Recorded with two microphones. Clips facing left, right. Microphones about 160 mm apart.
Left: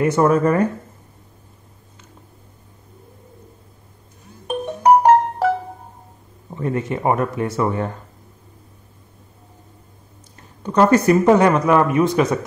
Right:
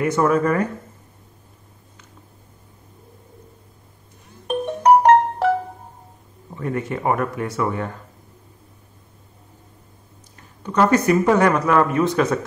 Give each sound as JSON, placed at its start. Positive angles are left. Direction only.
{"t": 0.0, "sound": "speech", "side_deg": 30}
{"t": 4.5, "sound": "music", "side_deg": 0}
{"t": 6.5, "sound": "speech", "side_deg": 25}
{"t": 10.6, "sound": "speech", "side_deg": 30}
{"t": 11.3, "sound": "speech", "side_deg": 20}